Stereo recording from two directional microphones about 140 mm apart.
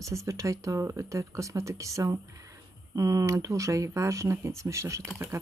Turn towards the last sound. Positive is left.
turn(degrees=-20)  # may be behind; listen again after turning